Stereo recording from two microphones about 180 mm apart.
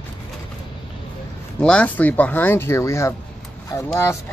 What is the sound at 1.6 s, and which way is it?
Speech, 5° left (ahead or behind).